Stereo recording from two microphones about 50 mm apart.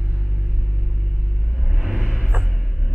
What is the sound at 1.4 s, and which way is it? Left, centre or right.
Vehicle, centre.